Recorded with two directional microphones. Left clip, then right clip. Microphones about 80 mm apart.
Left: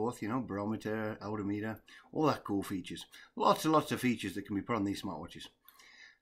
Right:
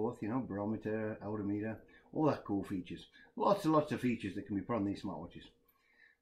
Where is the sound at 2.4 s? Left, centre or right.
Left.